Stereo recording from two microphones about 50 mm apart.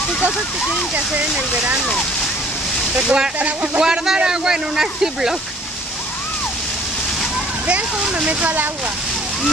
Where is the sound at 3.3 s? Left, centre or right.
Right.